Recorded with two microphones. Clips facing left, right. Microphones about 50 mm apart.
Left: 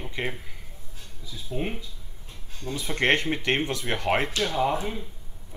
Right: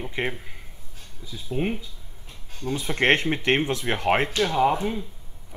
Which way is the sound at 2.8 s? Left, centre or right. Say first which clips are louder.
Right 2 dB; right.